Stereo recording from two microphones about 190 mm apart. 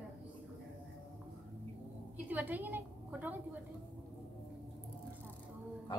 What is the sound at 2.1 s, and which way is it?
A woman's voice, 10° right (ahead or behind).